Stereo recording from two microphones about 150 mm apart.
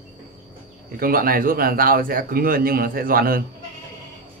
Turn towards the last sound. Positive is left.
turn(degrees=-75)  # may be behind; listen again after turning